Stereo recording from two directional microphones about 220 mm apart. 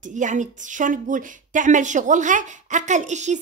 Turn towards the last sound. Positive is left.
turn(degrees=-30)  # may be behind; listen again after turning